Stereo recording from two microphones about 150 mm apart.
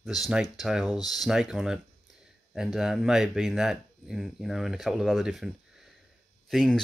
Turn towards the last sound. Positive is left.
turn(degrees=0)  # may be behind; listen again after turning